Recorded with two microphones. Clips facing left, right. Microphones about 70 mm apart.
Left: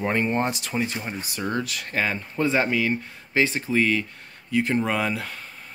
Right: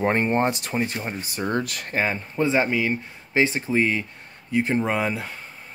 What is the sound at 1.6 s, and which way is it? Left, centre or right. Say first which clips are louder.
Speech: even; right.